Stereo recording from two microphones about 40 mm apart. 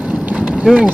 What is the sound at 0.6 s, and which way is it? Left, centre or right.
Speech, right.